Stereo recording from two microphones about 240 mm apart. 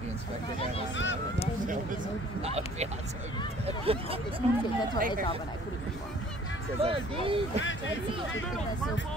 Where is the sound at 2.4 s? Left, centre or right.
Right.